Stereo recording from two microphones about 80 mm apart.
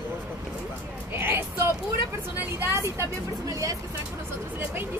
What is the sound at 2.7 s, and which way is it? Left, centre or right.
Speech, right.